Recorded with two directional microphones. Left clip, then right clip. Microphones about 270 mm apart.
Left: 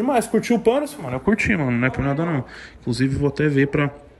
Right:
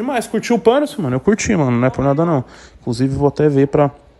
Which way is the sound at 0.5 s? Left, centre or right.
Right.